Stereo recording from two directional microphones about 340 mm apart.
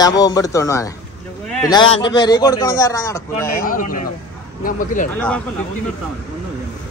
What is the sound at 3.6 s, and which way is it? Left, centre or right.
Speech, left.